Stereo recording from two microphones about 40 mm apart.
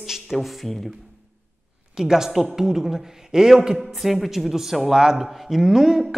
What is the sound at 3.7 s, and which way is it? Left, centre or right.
A woman's voice, centre.